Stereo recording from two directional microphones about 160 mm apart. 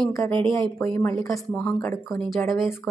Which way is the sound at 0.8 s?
15° left (ahead or behind).